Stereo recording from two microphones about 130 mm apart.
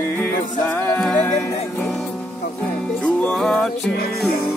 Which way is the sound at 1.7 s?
5° left (ahead or behind).